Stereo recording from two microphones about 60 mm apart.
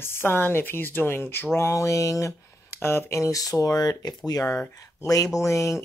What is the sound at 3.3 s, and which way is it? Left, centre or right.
Speech, left.